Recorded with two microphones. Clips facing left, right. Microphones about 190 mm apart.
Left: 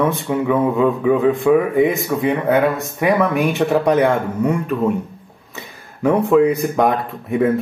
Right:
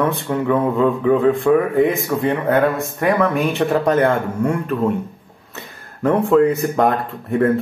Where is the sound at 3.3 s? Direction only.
15° left (ahead or behind).